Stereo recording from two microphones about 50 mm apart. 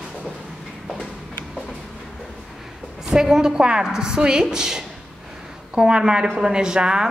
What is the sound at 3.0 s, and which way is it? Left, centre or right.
A woman's voice, centre.